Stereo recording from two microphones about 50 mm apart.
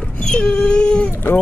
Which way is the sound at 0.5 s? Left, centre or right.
Left.